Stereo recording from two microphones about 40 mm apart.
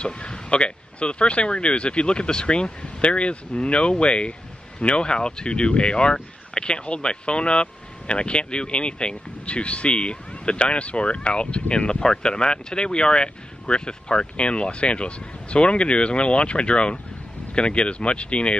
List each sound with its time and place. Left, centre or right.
0.0 s speech: left